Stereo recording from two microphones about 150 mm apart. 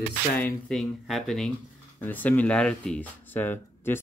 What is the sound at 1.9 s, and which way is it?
Speech, 10° left (ahead or behind).